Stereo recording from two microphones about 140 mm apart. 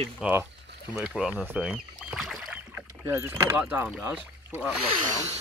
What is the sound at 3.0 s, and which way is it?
Speech, 20° right (ahead or behind).